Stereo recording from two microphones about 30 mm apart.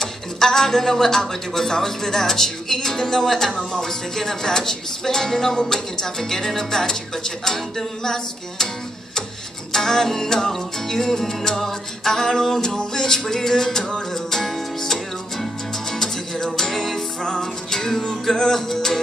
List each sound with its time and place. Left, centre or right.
0.0 s speech: centre
1.7 s music: centre
9.7 s music: centre
17.2 s music: left
17.6 s music: centre